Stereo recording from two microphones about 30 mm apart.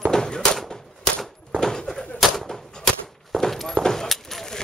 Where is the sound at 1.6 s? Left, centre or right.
Left.